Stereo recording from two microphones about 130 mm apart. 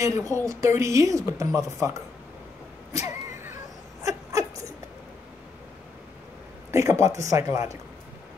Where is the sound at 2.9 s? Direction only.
25° right (ahead or behind).